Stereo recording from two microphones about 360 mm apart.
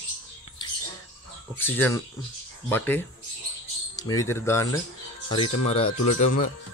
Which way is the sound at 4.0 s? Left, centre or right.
Centre.